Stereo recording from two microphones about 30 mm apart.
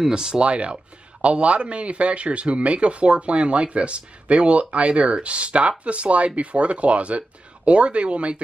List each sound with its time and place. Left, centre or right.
0.1 s speech: right
0.4 s speech: right